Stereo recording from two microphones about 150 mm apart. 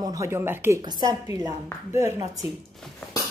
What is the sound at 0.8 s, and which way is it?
Speech, 25° right (ahead or behind).